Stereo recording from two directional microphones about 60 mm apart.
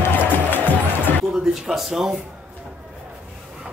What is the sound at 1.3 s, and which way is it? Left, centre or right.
Speech, centre.